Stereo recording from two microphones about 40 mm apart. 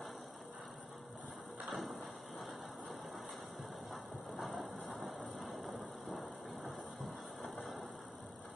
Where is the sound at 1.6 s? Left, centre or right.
Centre.